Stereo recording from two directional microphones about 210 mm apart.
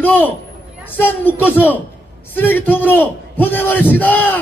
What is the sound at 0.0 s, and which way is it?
Speech, 10° left (ahead or behind).